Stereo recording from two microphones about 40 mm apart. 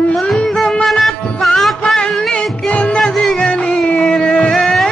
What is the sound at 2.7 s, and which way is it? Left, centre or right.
Music, left.